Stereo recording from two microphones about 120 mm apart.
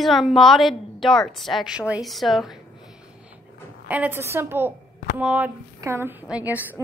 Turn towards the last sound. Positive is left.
turn(degrees=-10)  # may be behind; listen again after turning